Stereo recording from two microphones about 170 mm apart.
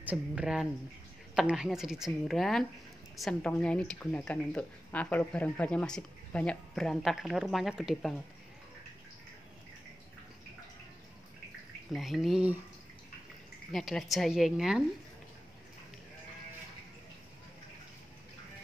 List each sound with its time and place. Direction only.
0.0 s speech: 10° right (ahead or behind)
11.9 s speech: centre (ahead or behind)
13.7 s speech: 5° left (ahead or behind)